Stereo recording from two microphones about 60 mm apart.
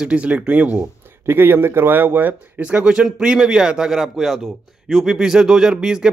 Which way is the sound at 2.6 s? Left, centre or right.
Right.